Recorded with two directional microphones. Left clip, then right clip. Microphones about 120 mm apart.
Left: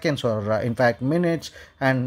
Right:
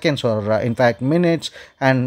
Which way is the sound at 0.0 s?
20° right (ahead or behind).